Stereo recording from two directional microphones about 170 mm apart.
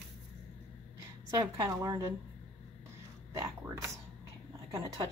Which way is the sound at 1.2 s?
20° right (ahead or behind).